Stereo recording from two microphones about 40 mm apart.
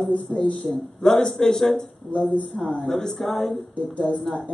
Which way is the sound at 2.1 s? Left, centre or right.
Left.